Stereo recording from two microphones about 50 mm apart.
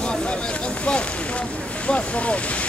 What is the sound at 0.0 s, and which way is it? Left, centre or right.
Boat, centre.